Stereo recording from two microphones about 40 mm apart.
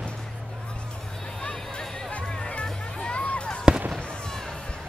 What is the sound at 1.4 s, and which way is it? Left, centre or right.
Music, left.